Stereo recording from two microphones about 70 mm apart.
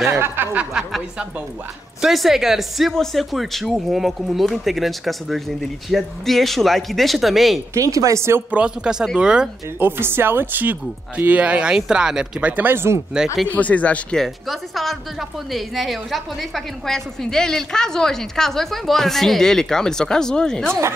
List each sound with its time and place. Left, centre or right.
0.4 s a sound: right
2.0 s a woman's voice: centre
7.7 s speech: right
8.5 s speech: centre
9.8 s speech: right
12.6 s speech: right
13.5 s speech: left
14.1 s a woman's voice: centre